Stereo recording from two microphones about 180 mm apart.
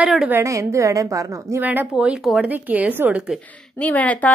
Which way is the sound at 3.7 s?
10° left (ahead or behind).